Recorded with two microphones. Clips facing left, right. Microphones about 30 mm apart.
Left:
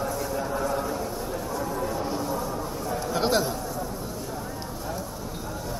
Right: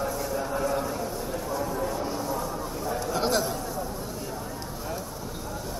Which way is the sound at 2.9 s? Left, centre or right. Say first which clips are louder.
Left 2 dB; centre.